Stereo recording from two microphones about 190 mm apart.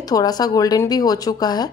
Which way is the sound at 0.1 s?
20° left (ahead or behind).